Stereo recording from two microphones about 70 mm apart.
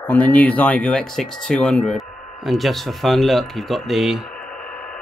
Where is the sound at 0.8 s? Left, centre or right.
Centre.